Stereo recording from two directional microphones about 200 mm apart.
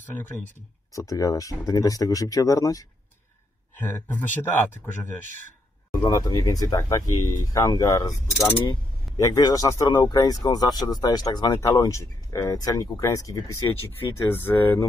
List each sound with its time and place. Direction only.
0.0 s speech: 10° left (ahead or behind)